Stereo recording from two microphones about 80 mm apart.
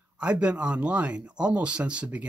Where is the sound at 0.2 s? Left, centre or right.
Centre.